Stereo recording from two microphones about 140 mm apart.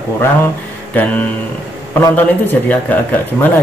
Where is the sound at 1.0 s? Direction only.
15° left (ahead or behind).